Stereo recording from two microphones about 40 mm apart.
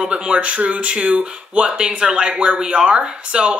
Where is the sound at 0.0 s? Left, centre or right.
Right.